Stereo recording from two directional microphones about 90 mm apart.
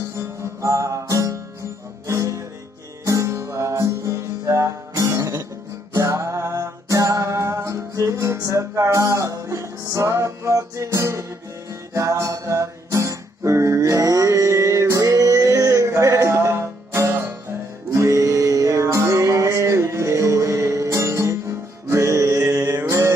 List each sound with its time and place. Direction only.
0.6 s music: 35° right (ahead or behind)